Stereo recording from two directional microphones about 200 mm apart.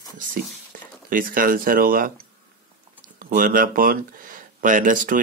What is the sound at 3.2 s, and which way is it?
Speech, 45° right (ahead or behind).